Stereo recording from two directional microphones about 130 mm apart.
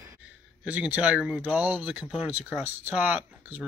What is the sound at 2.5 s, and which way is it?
Speech, 15° right (ahead or behind).